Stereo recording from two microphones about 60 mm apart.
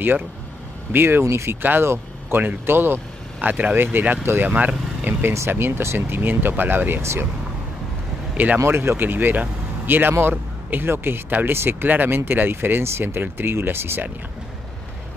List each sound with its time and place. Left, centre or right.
0.9 s speech: right
1.2 s speech: right
1.6 s speech: right
4.5 s vehicle: right
5.2 s speech: right
7.0 s speech: right
8.6 s speech: right